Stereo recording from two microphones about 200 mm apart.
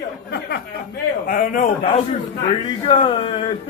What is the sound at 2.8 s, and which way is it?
Speech, 30° left (ahead or behind).